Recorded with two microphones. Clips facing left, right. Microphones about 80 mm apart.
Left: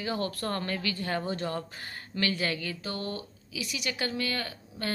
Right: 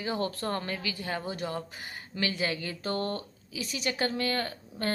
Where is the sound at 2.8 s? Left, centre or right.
Right.